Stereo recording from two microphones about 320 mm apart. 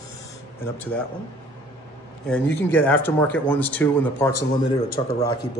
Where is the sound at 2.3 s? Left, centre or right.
Centre.